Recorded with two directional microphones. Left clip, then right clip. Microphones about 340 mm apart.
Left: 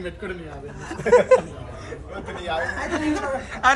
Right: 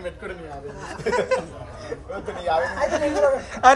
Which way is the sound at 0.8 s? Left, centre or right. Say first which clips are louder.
Left 7 dB; centre.